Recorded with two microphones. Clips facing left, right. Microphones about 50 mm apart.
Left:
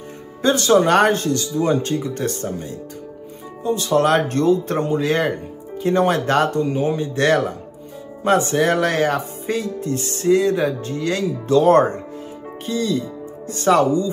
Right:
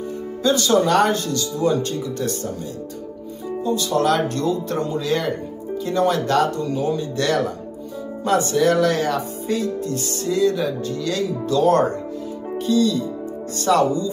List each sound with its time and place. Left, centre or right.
0.4 s speech: left
3.6 s speech: left